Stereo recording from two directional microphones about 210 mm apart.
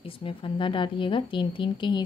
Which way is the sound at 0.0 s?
25° left (ahead or behind).